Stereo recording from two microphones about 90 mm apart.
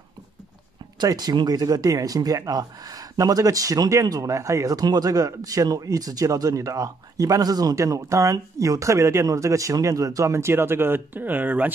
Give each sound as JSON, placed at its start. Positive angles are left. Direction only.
{"t": 0.9, "sound": "speech", "side_deg": -50}